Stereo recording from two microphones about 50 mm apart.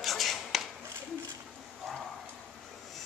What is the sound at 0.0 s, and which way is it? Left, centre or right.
Chopping, centre.